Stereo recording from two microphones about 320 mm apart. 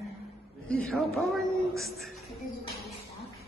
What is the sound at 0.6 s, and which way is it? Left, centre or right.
A man's voice, centre.